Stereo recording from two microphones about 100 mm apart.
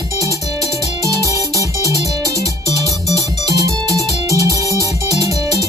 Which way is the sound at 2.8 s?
35° right (ahead or behind).